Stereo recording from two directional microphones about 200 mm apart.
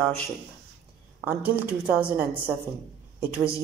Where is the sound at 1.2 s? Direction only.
10° right (ahead or behind).